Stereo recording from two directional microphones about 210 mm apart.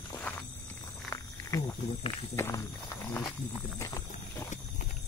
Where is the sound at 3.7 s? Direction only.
15° left (ahead or behind).